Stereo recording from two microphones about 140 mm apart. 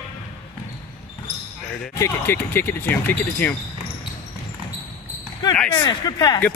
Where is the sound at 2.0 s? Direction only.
15° left (ahead or behind).